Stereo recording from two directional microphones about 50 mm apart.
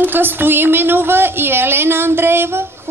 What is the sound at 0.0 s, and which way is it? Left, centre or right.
A woman's voice, right.